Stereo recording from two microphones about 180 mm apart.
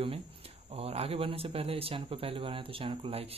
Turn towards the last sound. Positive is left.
turn(degrees=-30)  # may be behind; listen again after turning